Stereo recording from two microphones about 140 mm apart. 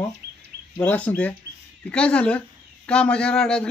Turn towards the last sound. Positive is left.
turn(degrees=5)  # may be behind; listen again after turning